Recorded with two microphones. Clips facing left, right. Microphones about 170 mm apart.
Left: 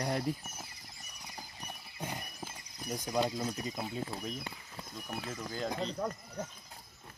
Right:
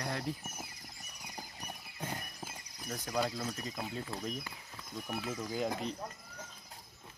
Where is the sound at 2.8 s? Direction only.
15° left (ahead or behind).